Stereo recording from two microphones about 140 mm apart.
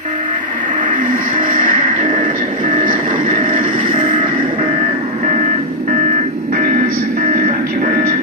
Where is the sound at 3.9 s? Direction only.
40° right (ahead or behind).